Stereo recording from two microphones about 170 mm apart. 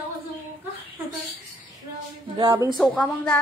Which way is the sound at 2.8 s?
Centre (ahead or behind).